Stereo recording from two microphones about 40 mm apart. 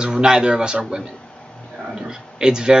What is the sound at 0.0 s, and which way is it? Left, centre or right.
Speech, centre.